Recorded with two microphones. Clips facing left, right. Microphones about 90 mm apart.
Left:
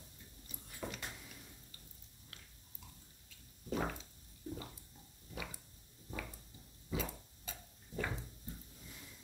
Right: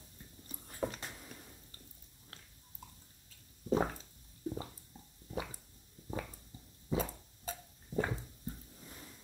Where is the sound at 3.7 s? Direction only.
30° right (ahead or behind).